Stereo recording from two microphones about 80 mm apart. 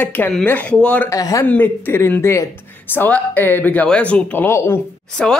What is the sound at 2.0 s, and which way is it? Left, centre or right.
Speech, left.